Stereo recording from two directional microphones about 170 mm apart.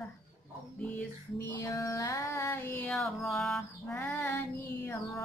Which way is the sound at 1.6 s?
20° left (ahead or behind).